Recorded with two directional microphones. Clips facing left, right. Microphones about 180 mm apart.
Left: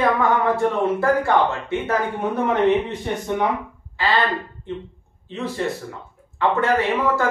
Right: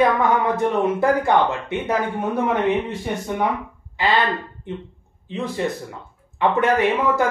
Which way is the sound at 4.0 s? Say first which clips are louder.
Right 1 dB; 20° right (ahead or behind).